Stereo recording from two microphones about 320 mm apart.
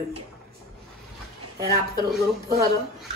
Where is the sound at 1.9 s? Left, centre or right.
Centre.